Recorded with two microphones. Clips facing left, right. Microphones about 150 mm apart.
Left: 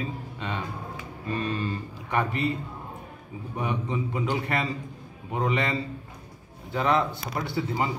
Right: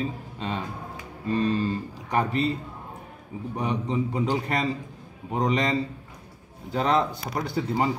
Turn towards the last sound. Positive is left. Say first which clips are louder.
# right 2 dB
turn(degrees=-40)  # may be behind; listen again after turning